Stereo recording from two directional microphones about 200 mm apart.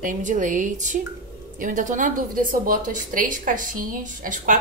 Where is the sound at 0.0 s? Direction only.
40° right (ahead or behind).